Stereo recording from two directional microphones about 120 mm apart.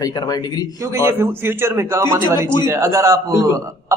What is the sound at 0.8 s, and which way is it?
A man's voice, 20° right (ahead or behind).